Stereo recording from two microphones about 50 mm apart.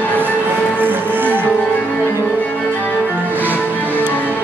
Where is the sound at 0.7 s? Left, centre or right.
Right.